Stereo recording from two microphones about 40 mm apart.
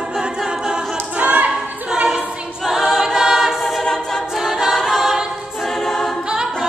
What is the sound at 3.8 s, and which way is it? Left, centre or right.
Choir, centre.